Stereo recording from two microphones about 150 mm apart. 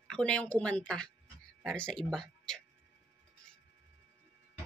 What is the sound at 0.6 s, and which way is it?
Music, 10° left (ahead or behind).